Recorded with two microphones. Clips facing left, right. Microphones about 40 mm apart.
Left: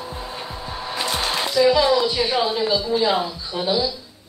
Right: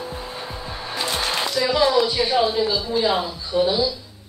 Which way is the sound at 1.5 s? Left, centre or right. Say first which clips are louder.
Left 4 dB; left.